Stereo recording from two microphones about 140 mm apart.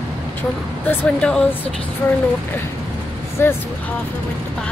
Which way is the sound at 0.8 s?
5° left (ahead or behind).